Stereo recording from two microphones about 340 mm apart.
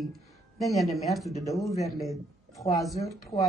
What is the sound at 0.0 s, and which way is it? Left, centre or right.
Speech, centre.